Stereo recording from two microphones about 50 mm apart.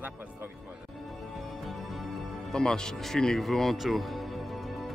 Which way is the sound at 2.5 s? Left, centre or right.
Centre.